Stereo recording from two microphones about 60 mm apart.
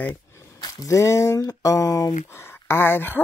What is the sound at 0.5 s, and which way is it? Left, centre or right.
Speech, left.